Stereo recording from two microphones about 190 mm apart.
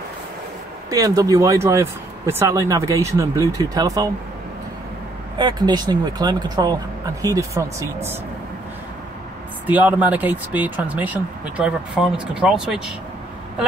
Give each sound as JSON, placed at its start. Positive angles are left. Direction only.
{"t": 0.8, "sound": "speech", "side_deg": -20}
{"t": 5.4, "sound": "speech", "side_deg": -20}
{"t": 9.7, "sound": "speech", "side_deg": -10}